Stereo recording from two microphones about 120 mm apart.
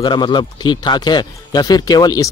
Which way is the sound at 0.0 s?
40° left (ahead or behind).